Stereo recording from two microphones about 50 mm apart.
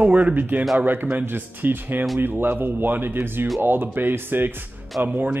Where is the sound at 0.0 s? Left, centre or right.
Right.